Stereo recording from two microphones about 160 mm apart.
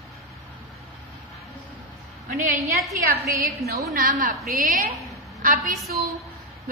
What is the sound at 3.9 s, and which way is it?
A woman's voice, 55° right (ahead or behind).